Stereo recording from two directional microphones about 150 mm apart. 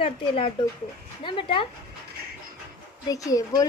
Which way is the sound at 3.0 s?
25° left (ahead or behind).